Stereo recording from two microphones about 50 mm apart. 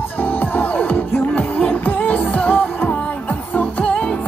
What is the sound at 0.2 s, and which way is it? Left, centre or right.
Music, left.